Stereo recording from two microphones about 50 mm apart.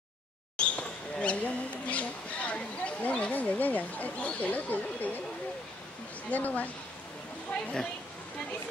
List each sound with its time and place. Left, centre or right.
0.6 s a sound: left
6.3 s a woman's voice: left
7.6 s speech: centre